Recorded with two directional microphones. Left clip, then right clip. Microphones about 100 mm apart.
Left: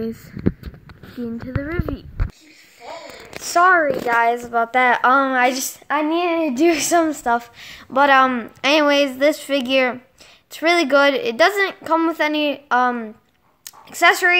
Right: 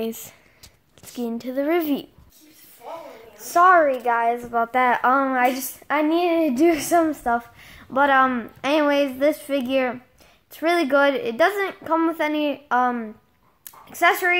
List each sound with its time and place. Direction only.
1.2 s speech: 10° right (ahead or behind)
3.5 s speech: 5° right (ahead or behind)
4.1 s a woman's voice: 20° left (ahead or behind)
5.9 s speech: 20° right (ahead or behind)
6.5 s a woman's voice: 5° left (ahead or behind)
13.7 s a sound: 15° left (ahead or behind)